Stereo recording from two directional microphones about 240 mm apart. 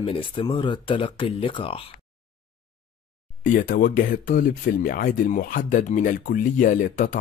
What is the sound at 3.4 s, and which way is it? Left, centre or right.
Speech, left.